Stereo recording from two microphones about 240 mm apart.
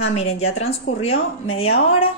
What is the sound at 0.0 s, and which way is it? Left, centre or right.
Speech, left.